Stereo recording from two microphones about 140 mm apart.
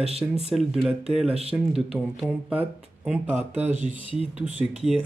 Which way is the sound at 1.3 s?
45° right (ahead or behind).